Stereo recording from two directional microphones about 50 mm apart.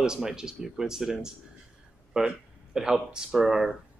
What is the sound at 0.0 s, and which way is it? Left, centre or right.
Speech, centre.